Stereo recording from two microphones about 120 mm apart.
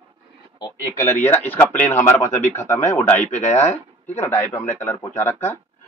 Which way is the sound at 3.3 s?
70° left (ahead or behind).